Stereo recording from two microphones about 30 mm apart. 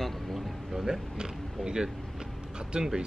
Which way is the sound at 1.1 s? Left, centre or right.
Right.